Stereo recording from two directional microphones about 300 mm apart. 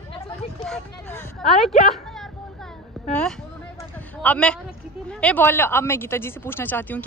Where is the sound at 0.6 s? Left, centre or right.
Centre.